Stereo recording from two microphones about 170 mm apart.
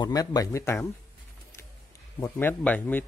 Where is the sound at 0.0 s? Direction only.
20° left (ahead or behind).